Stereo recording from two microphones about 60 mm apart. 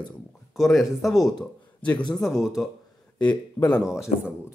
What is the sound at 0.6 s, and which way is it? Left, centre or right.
Speech, centre.